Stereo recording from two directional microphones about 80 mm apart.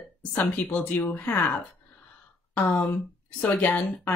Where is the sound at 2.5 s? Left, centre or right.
Left.